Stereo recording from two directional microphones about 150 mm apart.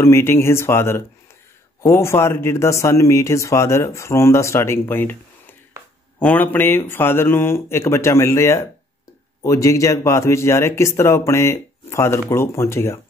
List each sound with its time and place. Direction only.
0.0 s speech: 15° left (ahead or behind)